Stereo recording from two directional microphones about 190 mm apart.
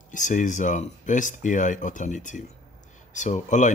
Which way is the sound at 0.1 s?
40° left (ahead or behind).